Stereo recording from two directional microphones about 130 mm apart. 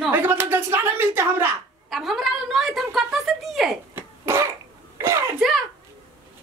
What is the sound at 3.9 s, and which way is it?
Throat clearing, 20° right (ahead or behind).